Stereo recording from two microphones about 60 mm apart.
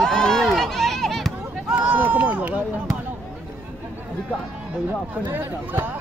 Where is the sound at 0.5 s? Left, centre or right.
Centre.